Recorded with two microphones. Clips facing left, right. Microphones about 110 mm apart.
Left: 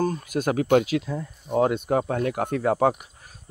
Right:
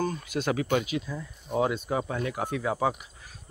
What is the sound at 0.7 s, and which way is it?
Speech, 70° left (ahead or behind).